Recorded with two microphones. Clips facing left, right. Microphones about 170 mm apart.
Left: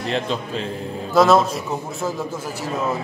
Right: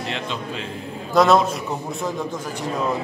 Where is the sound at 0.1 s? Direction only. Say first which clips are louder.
Left 5 dB; 35° left (ahead or behind).